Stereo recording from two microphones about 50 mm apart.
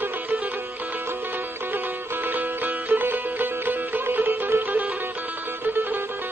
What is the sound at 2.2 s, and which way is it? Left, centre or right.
Music, right.